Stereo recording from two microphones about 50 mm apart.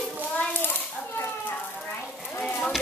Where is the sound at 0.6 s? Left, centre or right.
Left.